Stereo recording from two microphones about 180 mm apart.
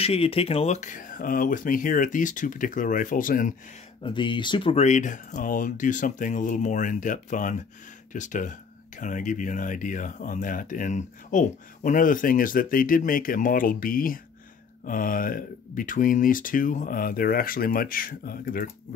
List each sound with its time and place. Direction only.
0.0 s speech: 35° left (ahead or behind); by 3.5 s 50° left (ahead or behind)
4.0 s speech: 25° left (ahead or behind); by 18.7 s 55° left (ahead or behind)